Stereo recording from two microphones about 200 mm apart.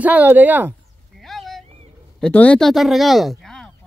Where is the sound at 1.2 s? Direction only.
Centre (ahead or behind).